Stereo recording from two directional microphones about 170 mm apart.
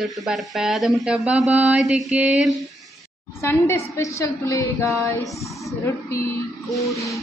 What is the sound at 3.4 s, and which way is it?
A woman's voice, 15° left (ahead or behind).